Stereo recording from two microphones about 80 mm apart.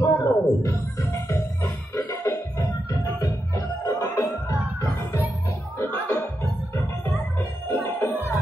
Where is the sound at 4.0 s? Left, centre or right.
Left.